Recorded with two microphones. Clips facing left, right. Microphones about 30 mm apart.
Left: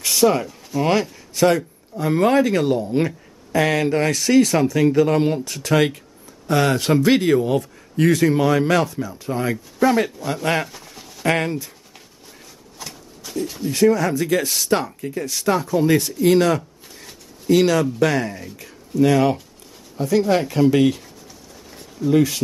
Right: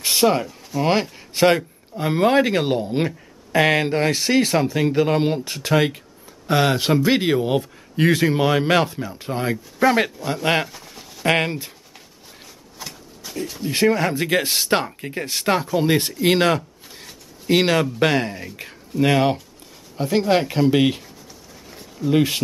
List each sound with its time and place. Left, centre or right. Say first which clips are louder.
0.0 s a sound: left 1 dB; right
0.4 s speech: left 1 dB; centre
0.8 s speech: even; centre
1.3 s speech: right 1 dB; right
5.7 s speech: left 1 dB; centre
6.4 s speech: even; centre
10.4 s speech: right 1 dB; right
10.7 s a sound: even; centre
11.2 s speech: right 1 dB; right
12.7 s a sound: even; centre
13.7 s speech: left 2 dB; right
22.1 s speech: left 1 dB; right